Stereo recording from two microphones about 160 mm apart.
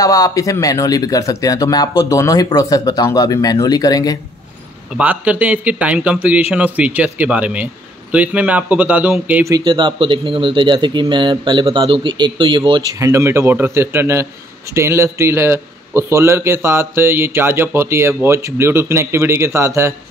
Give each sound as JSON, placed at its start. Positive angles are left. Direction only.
{"t": 0.0, "sound": "speech", "side_deg": 20}
{"t": 4.9, "sound": "a man's voice", "side_deg": -10}
{"t": 9.5, "sound": "speech", "side_deg": -25}
{"t": 13.1, "sound": "a man's voice", "side_deg": -15}